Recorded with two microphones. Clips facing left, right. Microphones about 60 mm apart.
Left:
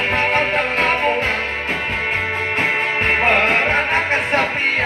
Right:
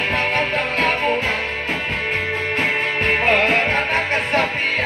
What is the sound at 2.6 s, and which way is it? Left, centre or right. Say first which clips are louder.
Music: left 2 dB; centre.